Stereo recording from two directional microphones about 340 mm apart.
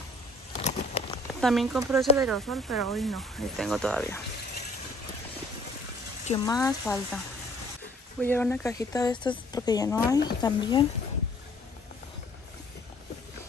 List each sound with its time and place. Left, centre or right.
0.5 s a sound: centre
1.4 s speech: centre
6.2 s speech: centre
8.2 s speech: centre